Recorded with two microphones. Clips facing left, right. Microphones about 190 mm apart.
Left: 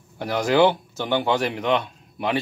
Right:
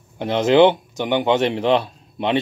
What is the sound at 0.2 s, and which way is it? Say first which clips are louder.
A man's voice: right 5 dB; 20° right (ahead or behind).